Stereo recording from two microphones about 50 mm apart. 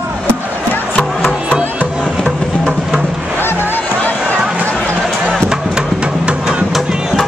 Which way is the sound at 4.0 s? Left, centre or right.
Left.